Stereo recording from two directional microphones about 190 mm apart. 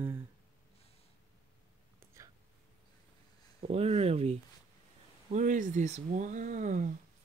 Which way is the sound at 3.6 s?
30° right (ahead or behind).